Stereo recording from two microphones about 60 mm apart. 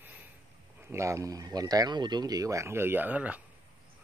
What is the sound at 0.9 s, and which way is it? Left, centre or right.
Speech, right.